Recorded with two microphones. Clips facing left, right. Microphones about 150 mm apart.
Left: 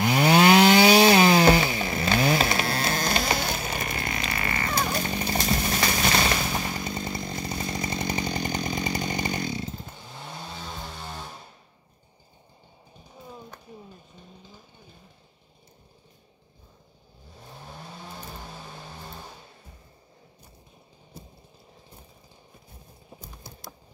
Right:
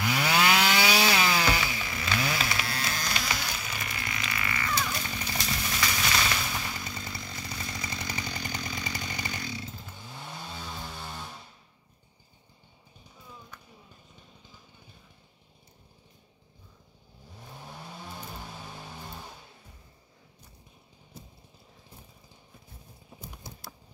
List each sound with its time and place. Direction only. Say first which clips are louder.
0.1 s chainsaw: left 8 dB; 45° left (ahead or behind)
0.4 s chainsaw: left 9 dB; 30° left (ahead or behind)
1.1 s chainsaw: left 9 dB; 45° left (ahead or behind)
6.8 s chainsaw: left 8 dB; 25° left (ahead or behind)
7.3 s chainsaw: left 8 dB; 35° left (ahead or behind)
8.8 s chainsaw: left 8 dB; 45° left (ahead or behind)
9.1 s chainsaw: left 8 dB; 25° left (ahead or behind)